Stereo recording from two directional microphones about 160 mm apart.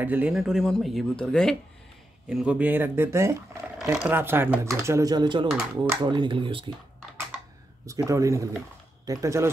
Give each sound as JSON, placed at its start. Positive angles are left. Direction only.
{"t": 0.0, "sound": "speech", "side_deg": -10}
{"t": 7.8, "sound": "speech", "side_deg": -20}